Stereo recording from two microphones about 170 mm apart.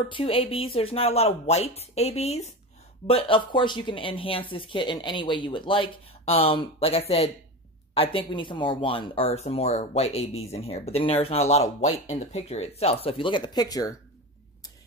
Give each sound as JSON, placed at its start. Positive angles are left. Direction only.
{"t": 0.1, "sound": "speech", "side_deg": 35}